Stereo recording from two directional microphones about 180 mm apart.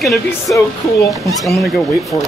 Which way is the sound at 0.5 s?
15° left (ahead or behind).